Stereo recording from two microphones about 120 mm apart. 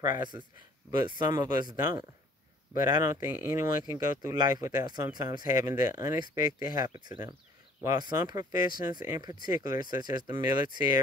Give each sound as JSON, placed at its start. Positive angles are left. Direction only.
{"t": 0.2, "sound": "speech", "side_deg": -40}